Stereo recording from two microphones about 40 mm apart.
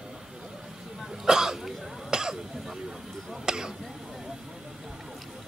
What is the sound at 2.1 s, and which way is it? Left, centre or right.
Cough, centre.